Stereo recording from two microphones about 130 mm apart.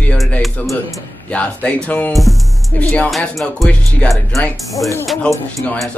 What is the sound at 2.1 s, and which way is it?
Speech, centre (ahead or behind).